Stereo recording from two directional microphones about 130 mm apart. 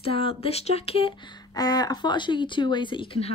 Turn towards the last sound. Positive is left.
turn(degrees=40)  # may be behind; listen again after turning